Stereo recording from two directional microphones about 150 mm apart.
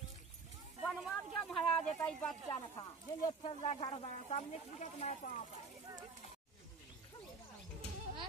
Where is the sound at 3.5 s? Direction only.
40° left (ahead or behind).